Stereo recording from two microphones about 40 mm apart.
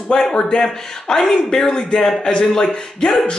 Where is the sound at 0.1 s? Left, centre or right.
Centre.